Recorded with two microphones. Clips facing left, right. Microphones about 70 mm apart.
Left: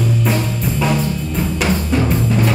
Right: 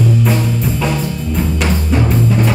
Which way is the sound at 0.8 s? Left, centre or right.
Centre.